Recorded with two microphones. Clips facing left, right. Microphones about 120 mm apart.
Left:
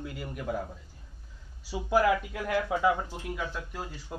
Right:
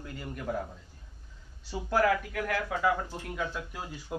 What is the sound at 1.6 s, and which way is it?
Speech, 10° left (ahead or behind).